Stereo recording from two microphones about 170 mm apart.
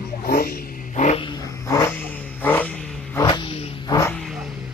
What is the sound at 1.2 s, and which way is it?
Vehicle, 25° left (ahead or behind).